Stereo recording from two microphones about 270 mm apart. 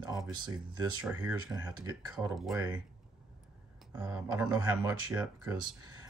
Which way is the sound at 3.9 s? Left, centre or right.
Centre.